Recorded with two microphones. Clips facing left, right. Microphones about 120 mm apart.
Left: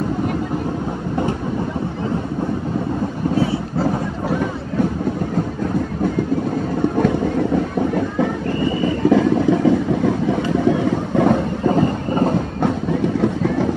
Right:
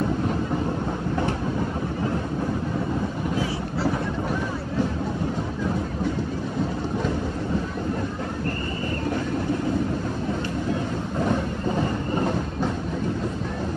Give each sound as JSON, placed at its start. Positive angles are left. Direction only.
{"t": 8.8, "sound": "vehicle", "side_deg": 90}
{"t": 13.2, "sound": "vehicle", "side_deg": 90}